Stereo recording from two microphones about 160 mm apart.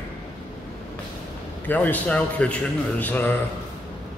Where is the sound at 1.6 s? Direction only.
10° left (ahead or behind).